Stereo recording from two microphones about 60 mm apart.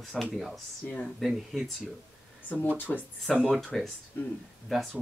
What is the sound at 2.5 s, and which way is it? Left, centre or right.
Speech, left.